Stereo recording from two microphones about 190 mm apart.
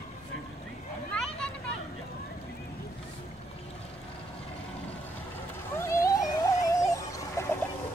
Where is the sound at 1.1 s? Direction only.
5° left (ahead or behind).